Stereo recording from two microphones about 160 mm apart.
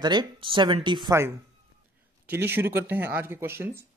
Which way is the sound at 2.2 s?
15° right (ahead or behind).